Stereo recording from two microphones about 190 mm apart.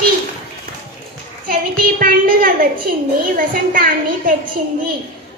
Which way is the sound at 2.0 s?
45° right (ahead or behind).